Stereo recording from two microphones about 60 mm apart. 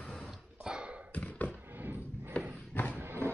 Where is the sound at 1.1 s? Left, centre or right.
Left.